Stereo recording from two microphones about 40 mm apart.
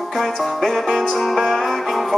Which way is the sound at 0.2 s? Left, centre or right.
Centre.